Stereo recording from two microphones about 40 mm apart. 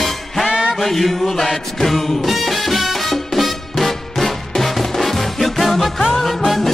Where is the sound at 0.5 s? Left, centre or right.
Right.